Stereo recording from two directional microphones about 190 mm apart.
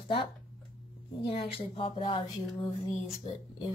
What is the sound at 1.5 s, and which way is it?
Speech, 30° left (ahead or behind).